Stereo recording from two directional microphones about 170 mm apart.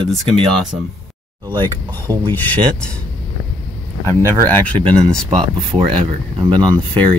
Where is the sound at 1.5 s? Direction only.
25° right (ahead or behind).